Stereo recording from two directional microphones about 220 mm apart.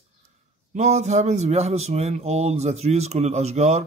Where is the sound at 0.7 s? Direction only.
30° right (ahead or behind).